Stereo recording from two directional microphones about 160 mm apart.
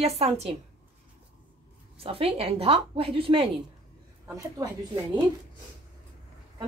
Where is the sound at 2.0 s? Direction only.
35° right (ahead or behind).